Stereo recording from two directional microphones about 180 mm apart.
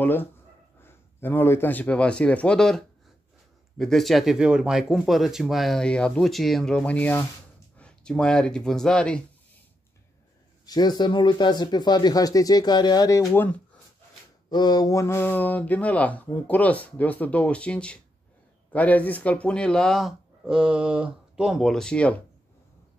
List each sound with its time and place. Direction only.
0.0 s a man's voice: 10° left (ahead or behind)
10.6 s speech: 20° left (ahead or behind)
14.5 s speech: 25° left (ahead or behind); by 22.1 s 5° left (ahead or behind)